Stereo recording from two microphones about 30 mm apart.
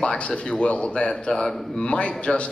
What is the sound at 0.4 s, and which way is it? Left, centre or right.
Speech, left.